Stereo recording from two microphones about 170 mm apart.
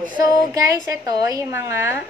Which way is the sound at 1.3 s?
15° right (ahead or behind).